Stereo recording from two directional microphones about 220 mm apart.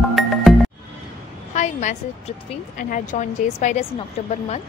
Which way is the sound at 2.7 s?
35° left (ahead or behind).